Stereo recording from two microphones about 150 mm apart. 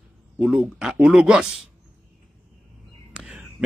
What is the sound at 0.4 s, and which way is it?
Speech, 5° right (ahead or behind).